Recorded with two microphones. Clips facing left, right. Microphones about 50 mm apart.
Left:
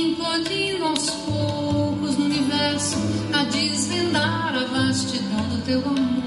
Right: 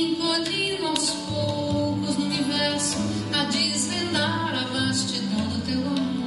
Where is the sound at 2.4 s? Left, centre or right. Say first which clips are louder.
Left 3 dB; left.